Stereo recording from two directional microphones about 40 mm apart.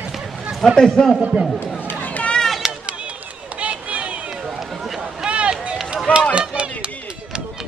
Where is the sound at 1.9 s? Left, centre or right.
Left.